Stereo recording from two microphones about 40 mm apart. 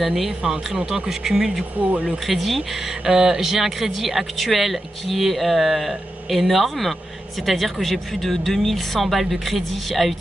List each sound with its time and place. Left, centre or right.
0.0 s speech: centre
0.7 s speech: right
1.0 s speech: centre
1.8 s speech: right
2.2 s speech: centre
3.1 s speech: centre